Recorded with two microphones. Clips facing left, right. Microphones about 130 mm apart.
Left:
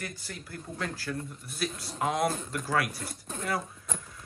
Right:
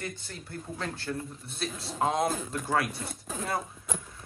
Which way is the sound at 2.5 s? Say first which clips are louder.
Right 1 dB; 25° right (ahead or behind).